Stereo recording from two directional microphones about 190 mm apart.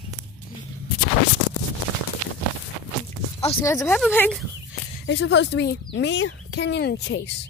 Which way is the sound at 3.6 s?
15° left (ahead or behind).